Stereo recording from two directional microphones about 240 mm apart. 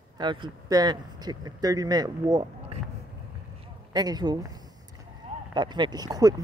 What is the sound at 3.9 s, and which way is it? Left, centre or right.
Speech, centre.